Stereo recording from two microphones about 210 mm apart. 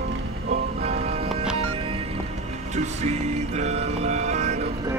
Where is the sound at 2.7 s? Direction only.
30° right (ahead or behind).